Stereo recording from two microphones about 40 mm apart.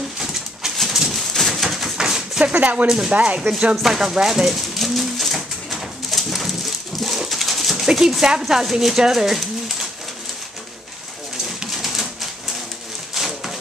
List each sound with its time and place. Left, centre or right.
0.2 s pigeon: centre
1.3 s bird: centre
2.0 s a sound: centre
2.4 s speech: right
3.3 s speech: right
3.8 s pigeon: centre
8.7 s speech: centre
11.6 s typewriter: centre
13.1 s a sound: centre